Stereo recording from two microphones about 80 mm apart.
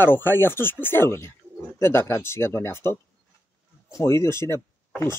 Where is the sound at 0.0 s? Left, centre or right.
Left.